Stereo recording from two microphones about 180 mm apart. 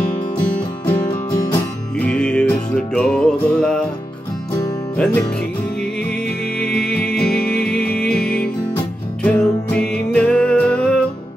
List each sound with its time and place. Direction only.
0.4 s music: 25° left (ahead or behind)
2.0 s music: 5° left (ahead or behind)
4.9 s music: 5° left (ahead or behind)
6.6 s music: 5° left (ahead or behind)